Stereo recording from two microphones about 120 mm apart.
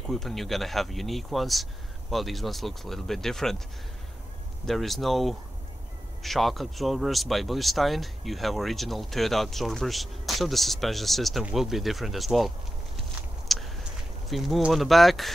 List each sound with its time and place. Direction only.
0.0 s speech: centre (ahead or behind)
4.6 s speech: centre (ahead or behind)
13.5 s a sound: centre (ahead or behind)
14.3 s speech: centre (ahead or behind)